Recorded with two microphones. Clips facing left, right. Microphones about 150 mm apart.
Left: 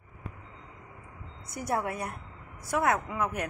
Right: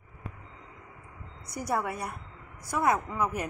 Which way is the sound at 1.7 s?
Centre (ahead or behind).